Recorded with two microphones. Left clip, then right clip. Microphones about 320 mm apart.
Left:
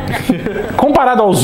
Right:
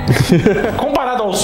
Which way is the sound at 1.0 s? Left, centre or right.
Left.